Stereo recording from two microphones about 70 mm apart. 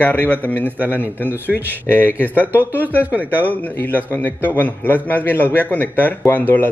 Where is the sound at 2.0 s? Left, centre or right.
Left.